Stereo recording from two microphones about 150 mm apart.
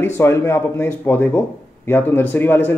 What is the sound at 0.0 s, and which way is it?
Speech, 15° left (ahead or behind).